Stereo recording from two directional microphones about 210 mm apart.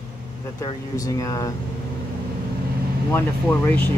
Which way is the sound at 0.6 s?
15° left (ahead or behind).